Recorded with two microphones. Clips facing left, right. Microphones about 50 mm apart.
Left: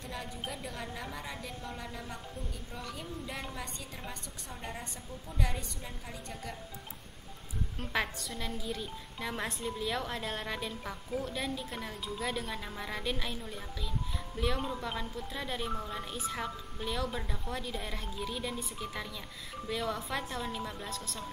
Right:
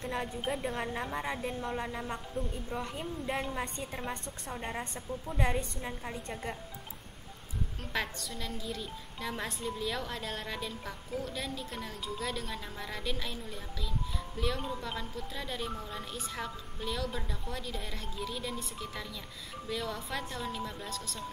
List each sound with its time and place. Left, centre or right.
0.0 s a woman's voice: right
5.4 s a woman's voice: right
7.8 s a woman's voice: centre